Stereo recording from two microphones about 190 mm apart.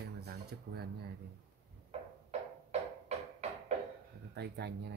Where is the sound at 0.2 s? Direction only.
55° right (ahead or behind).